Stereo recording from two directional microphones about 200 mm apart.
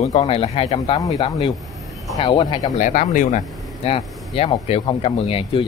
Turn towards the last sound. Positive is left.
turn(degrees=30)  # may be behind; listen again after turning